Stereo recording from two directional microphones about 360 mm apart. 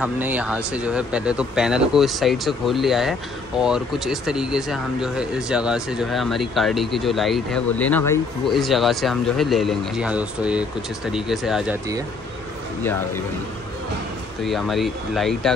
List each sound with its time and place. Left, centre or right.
0.0 s speech: centre
14.4 s speech: centre